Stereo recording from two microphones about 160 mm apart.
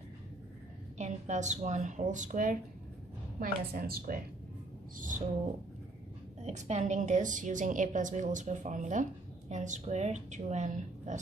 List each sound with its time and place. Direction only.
0.9 s a woman's voice: 45° right (ahead or behind)
3.3 s speech: 65° right (ahead or behind)
4.9 s a sound: 55° right (ahead or behind)
6.4 s a woman's voice: 45° right (ahead or behind)